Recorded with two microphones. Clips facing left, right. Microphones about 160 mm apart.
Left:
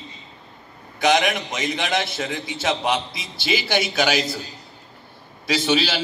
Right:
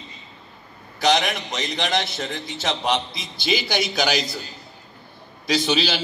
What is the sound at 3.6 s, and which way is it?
Speech, 25° left (ahead or behind).